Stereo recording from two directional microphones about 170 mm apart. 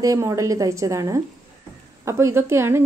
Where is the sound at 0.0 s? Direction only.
20° right (ahead or behind).